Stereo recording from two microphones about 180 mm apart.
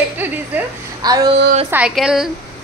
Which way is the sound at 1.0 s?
20° right (ahead or behind).